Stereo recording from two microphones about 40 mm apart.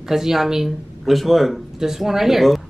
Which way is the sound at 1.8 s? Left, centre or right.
Centre.